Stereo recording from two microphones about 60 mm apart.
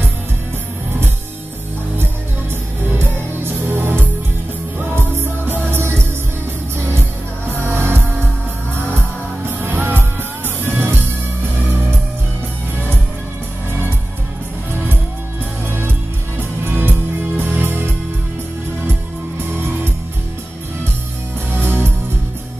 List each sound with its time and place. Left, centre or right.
2.9 s music: right
7.5 s music: right
9.5 s music: right
16.3 s music: right
21.5 s music: right